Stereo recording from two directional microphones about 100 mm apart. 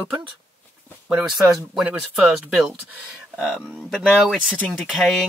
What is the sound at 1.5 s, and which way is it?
Speech, 5° right (ahead or behind).